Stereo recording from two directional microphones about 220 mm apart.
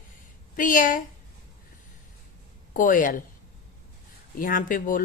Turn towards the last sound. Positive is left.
turn(degrees=40)  # may be behind; listen again after turning